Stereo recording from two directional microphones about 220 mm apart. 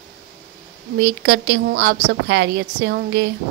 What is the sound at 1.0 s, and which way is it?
A woman's voice, 50° right (ahead or behind).